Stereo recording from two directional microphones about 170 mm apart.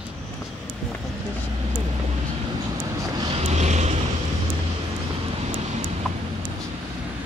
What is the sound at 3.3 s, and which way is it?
Vehicle, 40° right (ahead or behind).